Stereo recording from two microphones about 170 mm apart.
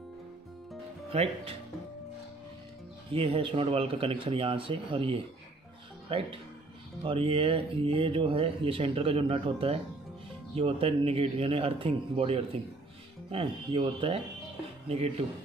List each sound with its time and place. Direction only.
1.1 s speech: 35° right (ahead or behind)
3.1 s speech: 30° right (ahead or behind)